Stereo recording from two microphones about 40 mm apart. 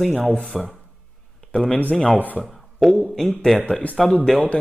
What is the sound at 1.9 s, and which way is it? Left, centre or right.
A man's voice, centre.